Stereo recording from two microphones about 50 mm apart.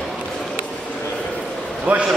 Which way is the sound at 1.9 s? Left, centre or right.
Right.